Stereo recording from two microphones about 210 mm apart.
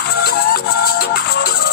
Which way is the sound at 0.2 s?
45° left (ahead or behind).